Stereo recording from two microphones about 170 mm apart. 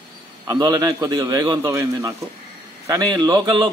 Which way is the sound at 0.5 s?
20° right (ahead or behind).